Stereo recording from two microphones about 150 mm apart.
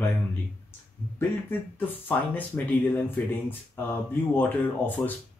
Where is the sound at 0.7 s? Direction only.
15° left (ahead or behind).